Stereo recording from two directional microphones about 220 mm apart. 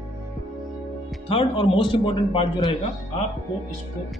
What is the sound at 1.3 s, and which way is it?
A man's voice, 25° left (ahead or behind).